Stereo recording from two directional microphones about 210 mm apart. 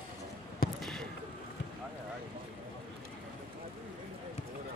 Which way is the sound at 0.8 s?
Centre (ahead or behind).